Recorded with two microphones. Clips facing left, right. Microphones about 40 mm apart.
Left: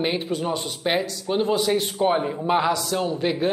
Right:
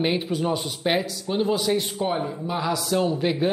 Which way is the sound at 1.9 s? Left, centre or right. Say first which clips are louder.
Left 4 dB; left.